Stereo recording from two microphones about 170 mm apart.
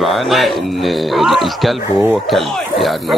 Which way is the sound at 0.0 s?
Centre (ahead or behind).